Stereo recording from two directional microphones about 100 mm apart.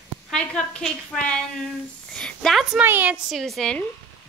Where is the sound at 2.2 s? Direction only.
5° left (ahead or behind).